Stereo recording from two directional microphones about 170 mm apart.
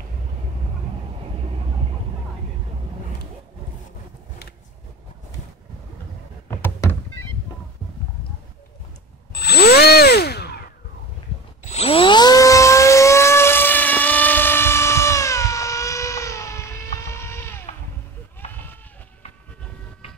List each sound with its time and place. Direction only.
6.6 s thunk: 15° left (ahead or behind)
9.3 s drill: 70° left (ahead or behind)
11.6 s a sound: 40° left (ahead or behind); by 17.6 s 15° left (ahead or behind)
18.5 s sheep: 10° left (ahead or behind)